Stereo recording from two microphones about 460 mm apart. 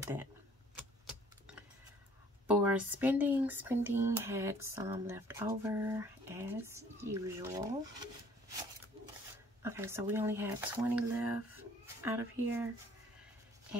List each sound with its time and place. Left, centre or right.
0.0 s speech: centre
0.7 s keys jangling: centre
2.4 s speech: centre
9.6 s speech: centre